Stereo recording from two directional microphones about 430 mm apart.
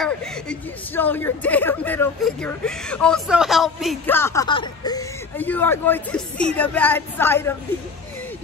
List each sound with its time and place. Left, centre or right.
0.0 s a woman's voice: centre